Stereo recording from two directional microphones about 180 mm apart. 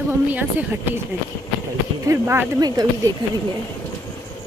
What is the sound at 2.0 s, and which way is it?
Speech, 15° right (ahead or behind).